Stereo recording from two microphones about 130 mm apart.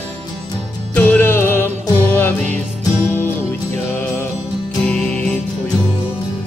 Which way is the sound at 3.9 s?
10° left (ahead or behind).